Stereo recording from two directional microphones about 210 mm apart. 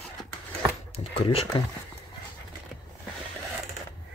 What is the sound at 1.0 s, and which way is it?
Speech, 25° left (ahead or behind).